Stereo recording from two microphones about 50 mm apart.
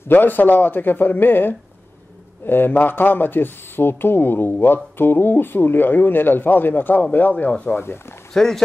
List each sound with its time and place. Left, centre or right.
0.1 s a man's voice: left
8.3 s speech: centre